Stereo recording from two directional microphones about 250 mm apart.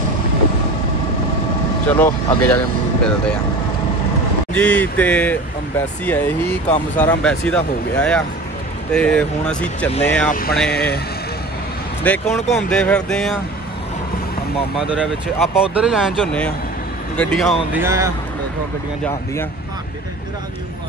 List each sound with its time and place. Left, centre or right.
1.9 s speech: centre
4.6 s speech: centre
10.3 s speech: left
12.0 s speech: centre
14.8 s speech: centre